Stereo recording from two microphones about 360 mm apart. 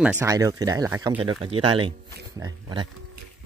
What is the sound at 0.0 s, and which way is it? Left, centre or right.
Speech, centre.